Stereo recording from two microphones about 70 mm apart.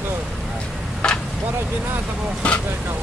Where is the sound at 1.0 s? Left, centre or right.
Centre.